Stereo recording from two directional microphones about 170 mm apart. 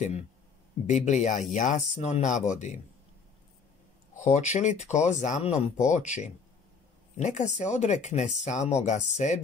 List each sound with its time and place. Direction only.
0.8 s speech: 45° left (ahead or behind)
4.2 s speech: 45° left (ahead or behind)